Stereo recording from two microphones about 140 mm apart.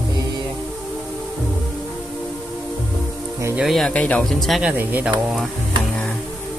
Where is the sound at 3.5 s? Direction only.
Centre (ahead or behind).